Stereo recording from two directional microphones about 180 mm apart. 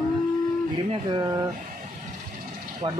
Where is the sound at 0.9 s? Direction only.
25° right (ahead or behind).